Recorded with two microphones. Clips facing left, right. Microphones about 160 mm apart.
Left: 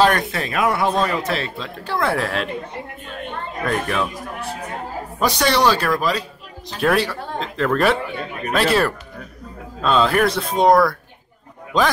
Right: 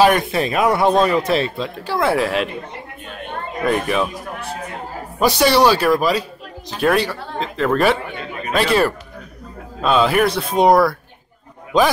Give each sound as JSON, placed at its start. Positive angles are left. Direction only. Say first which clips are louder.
{"t": 0.0, "sound": "speech", "louder": "right 3 dB", "side_deg": -15}
{"t": 1.9, "sound": "speech", "louder": "right 3 dB", "side_deg": -5}
{"t": 3.6, "sound": "speech", "louder": "right 4 dB", "side_deg": -10}
{"t": 5.2, "sound": "speech", "louder": "right 4 dB", "side_deg": -5}
{"t": 9.8, "sound": "speech", "louder": "right 2 dB", "side_deg": -10}